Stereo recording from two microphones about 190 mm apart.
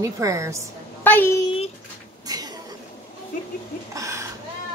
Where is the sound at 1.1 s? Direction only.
10° left (ahead or behind).